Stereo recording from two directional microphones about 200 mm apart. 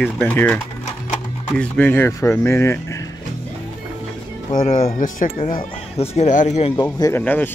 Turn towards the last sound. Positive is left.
turn(degrees=10)  # may be behind; listen again after turning